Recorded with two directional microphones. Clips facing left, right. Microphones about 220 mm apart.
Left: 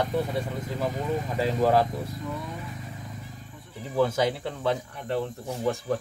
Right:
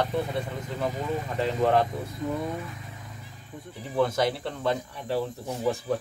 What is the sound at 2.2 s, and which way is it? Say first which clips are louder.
Speech: right 8 dB; 45° right (ahead or behind).